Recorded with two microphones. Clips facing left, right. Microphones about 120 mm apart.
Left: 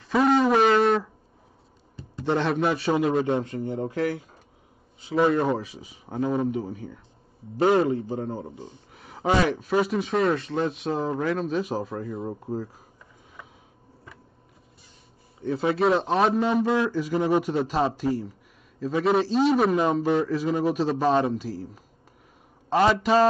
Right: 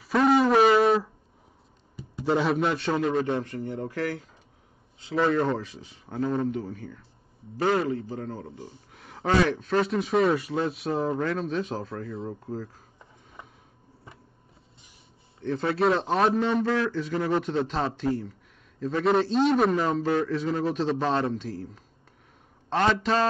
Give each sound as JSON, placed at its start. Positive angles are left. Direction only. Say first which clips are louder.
{"t": 0.0, "sound": "a sound", "louder": "even", "side_deg": 0}
{"t": 2.1, "sound": "speech", "louder": "even", "side_deg": -5}
{"t": 3.3, "sound": "speech", "louder": "left 3 dB", "side_deg": 20}
{"t": 7.5, "sound": "speech", "louder": "left 4 dB", "side_deg": 25}
{"t": 8.9, "sound": "a sound", "louder": "left 2 dB", "side_deg": 0}
{"t": 9.5, "sound": "speech", "louder": "left 1 dB", "side_deg": 5}
{"t": 15.4, "sound": "speech", "louder": "left 2 dB", "side_deg": 5}
{"t": 16.6, "sound": "speech", "louder": "left 2 dB", "side_deg": 15}
{"t": 19.8, "sound": "speech", "louder": "left 3 dB", "side_deg": 15}